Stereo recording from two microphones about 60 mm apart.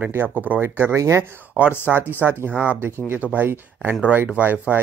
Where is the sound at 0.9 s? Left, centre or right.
Right.